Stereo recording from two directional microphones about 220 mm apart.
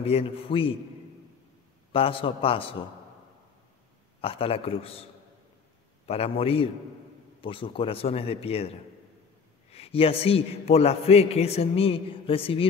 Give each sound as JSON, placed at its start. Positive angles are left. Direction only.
{"t": 0.0, "sound": "a man's voice", "side_deg": 25}
{"t": 1.9, "sound": "a man's voice", "side_deg": 25}
{"t": 4.2, "sound": "a man's voice", "side_deg": 25}
{"t": 6.0, "sound": "a man's voice", "side_deg": 25}